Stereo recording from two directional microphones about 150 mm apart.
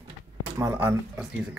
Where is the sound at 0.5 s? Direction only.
15° right (ahead or behind).